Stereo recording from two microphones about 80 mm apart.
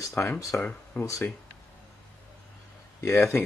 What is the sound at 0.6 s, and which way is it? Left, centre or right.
Speech, centre.